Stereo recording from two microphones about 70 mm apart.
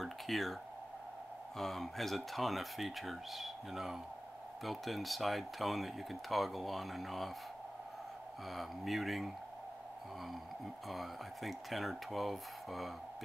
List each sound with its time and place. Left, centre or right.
0.0 s a sound: centre
1.6 s speech: centre
8.5 s speech: centre
10.9 s speech: centre